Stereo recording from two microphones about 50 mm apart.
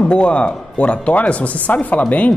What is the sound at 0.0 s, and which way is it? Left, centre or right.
A woman's voice, left.